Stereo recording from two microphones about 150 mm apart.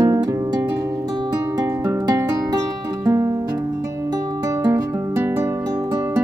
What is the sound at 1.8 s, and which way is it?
Music, 20° right (ahead or behind).